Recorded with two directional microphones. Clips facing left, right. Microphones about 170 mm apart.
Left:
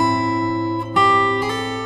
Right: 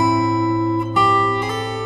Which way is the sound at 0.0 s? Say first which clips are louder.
Right 2 dB; centre (ahead or behind).